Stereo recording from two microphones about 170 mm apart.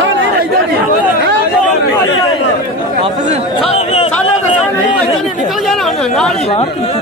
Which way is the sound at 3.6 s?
35° left (ahead or behind).